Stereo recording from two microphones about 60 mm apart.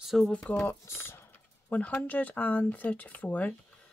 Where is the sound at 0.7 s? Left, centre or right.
Left.